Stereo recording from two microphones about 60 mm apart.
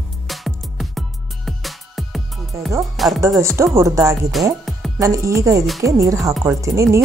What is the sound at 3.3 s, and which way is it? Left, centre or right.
Speech, right.